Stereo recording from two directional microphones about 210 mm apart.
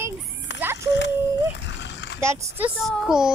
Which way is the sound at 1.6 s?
60° left (ahead or behind).